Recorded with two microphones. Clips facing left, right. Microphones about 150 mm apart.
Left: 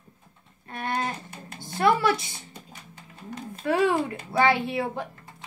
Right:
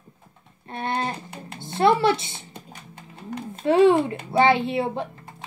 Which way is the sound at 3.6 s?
25° right (ahead or behind).